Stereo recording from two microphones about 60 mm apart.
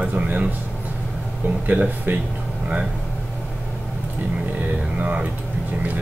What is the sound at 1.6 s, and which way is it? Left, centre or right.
Speech, right.